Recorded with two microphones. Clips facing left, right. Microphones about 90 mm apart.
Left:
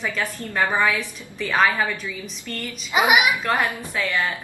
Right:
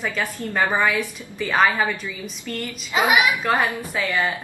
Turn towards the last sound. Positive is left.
turn(degrees=-20)  # may be behind; listen again after turning